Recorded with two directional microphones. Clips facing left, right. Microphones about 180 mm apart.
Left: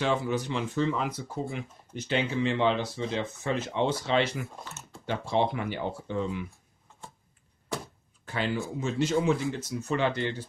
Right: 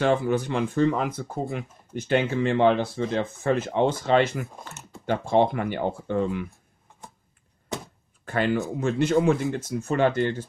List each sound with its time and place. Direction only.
0.0 s speech: 50° right (ahead or behind)
7.7 s a sound: 20° right (ahead or behind)
8.3 s speech: 55° right (ahead or behind)